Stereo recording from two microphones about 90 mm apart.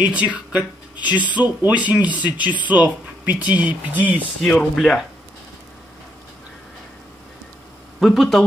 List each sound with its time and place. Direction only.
0.0 s speech: 15° right (ahead or behind)
4.4 s speech: 10° left (ahead or behind)
8.0 s speech: centre (ahead or behind)